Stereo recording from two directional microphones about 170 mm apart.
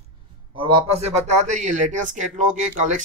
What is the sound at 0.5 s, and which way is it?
Speech, 30° right (ahead or behind).